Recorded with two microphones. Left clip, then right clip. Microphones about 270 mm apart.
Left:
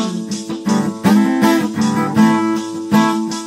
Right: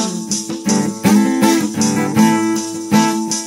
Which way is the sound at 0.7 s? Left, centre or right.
Centre.